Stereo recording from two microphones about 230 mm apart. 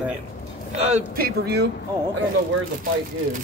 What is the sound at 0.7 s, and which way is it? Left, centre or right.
Speech, right.